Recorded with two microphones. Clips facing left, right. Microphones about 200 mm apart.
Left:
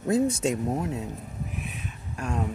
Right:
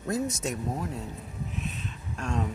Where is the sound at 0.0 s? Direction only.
25° left (ahead or behind).